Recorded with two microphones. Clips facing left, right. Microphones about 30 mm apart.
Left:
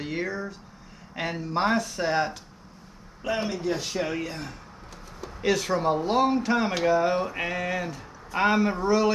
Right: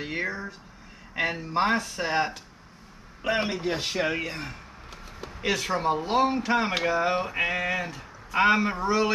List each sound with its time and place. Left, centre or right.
0.0 s speech: centre
3.2 s a man's voice: right; by 9.1 s centre